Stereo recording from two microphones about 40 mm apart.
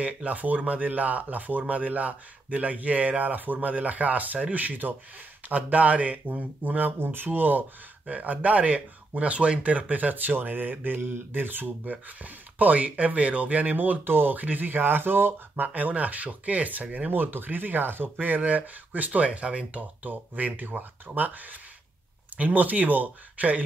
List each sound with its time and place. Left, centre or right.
0.0 s speech: right
7.0 s speech: right
11.8 s speech: right
15.6 s speech: right
16.8 s speech: right
17.1 s speech: right
18.2 s speech: right